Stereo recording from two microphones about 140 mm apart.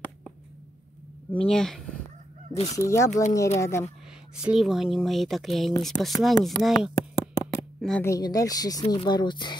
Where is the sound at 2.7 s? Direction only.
20° left (ahead or behind).